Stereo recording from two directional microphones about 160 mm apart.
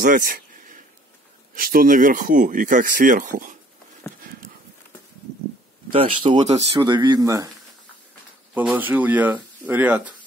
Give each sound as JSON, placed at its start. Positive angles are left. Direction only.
{"t": 0.0, "sound": "a sound", "side_deg": -60}
{"t": 1.5, "sound": "speech", "side_deg": -60}
{"t": 5.9, "sound": "speech", "side_deg": -30}
{"t": 6.4, "sound": "speech", "side_deg": -40}
{"t": 6.8, "sound": "speech", "side_deg": -25}
{"t": 8.5, "sound": "speech", "side_deg": -10}